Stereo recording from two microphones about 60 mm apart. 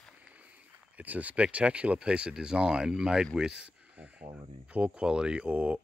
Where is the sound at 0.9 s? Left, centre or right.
Right.